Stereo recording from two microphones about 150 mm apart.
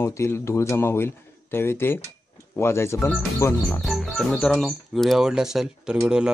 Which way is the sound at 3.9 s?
Centre (ahead or behind).